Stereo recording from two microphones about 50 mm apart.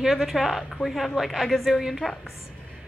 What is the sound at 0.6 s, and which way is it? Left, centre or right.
Speech, centre.